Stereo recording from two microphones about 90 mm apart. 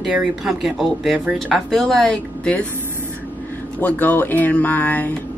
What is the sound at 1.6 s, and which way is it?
Speech, 5° left (ahead or behind).